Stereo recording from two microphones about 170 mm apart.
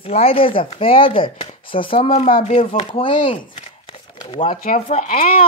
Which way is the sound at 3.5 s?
35° left (ahead or behind).